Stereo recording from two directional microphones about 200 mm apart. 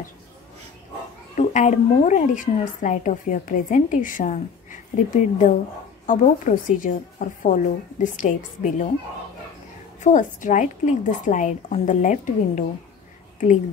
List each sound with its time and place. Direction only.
1.3 s a woman's voice: 35° left (ahead or behind)
9.9 s a woman's voice: 40° left (ahead or behind)